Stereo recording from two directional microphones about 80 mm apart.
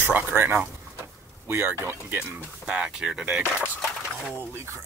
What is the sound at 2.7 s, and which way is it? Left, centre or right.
Speech, centre.